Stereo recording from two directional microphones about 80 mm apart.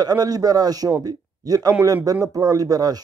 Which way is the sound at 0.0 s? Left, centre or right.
Right.